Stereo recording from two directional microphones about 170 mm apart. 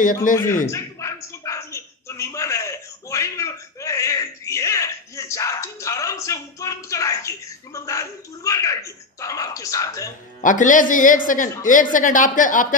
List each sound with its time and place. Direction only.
0.0 s a woman's voice: 50° left (ahead or behind)
0.7 s a sound: 20° left (ahead or behind)
10.4 s a woman's voice: 50° left (ahead or behind)